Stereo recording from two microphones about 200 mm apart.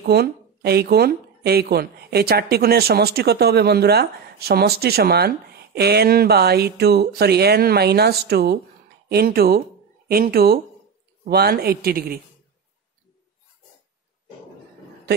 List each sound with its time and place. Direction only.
0.0 s speech: 55° right (ahead or behind)